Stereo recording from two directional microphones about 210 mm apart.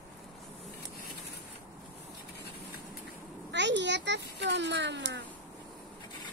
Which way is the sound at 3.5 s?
55° right (ahead or behind).